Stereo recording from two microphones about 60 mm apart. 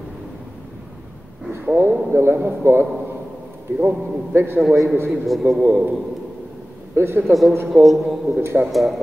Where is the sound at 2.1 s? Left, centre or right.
Right.